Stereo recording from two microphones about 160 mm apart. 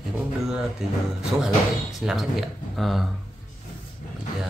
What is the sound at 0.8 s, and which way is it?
Speech, centre (ahead or behind).